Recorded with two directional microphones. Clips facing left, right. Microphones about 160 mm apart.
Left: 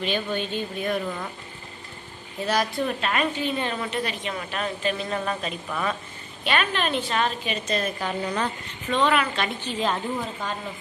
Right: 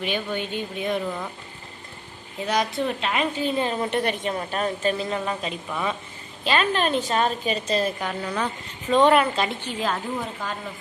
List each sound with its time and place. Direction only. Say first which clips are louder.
0.0 s speech: left 1 dB; 10° right (ahead or behind)
2.4 s a woman's voice: even; 20° right (ahead or behind)
3.3 s a woman's voice: right 3 dB; 35° right (ahead or behind)
3.9 s a woman's voice: right 5 dB; 55° right (ahead or behind)
4.3 s a woman's voice: right 4 dB; 35° right (ahead or behind)
5.1 s a woman's voice: right 1 dB; 20° right (ahead or behind)
6.4 s a woman's voice: right 3 dB; 30° right (ahead or behind)
8.1 s speech: left 2 dB; 5° left (ahead or behind)
9.2 s a woman's voice: right 3 dB; 35° right (ahead or behind)
9.7 s speech: left 1 dB; 5° right (ahead or behind)